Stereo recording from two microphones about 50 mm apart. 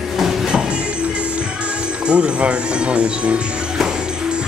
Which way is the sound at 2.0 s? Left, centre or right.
Right.